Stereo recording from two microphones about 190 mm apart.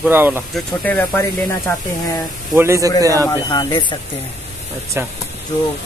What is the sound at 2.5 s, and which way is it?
Speech, 15° right (ahead or behind).